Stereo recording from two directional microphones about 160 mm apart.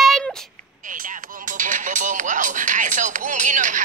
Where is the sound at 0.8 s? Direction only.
55° right (ahead or behind).